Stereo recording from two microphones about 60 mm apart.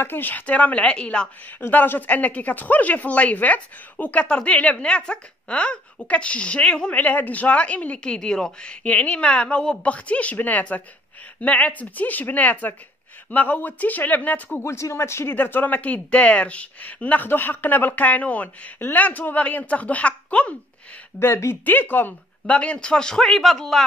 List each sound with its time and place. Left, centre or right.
0.0 s speech: left; by 1.3 s centre
1.6 s speech: left; by 8.7 s centre
8.8 s speech: left
14.6 s speech: left
15.3 s speech: left
21.2 s speech: left
21.6 s speech: left
22.6 s a man's voice: centre